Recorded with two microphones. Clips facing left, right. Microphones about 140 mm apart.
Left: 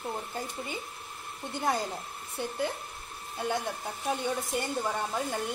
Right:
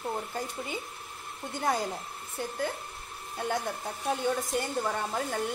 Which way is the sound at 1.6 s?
Centre (ahead or behind).